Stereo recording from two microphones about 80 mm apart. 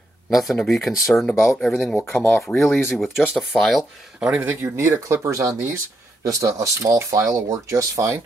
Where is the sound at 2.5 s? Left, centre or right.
Left.